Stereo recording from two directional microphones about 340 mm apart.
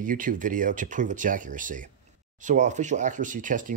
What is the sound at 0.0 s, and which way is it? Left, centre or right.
Speech, right.